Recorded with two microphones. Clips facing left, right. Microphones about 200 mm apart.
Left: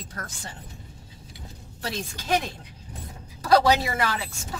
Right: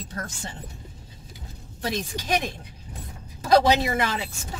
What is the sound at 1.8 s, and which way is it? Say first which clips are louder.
A woman's voice: right 2 dB; 20° right (ahead or behind).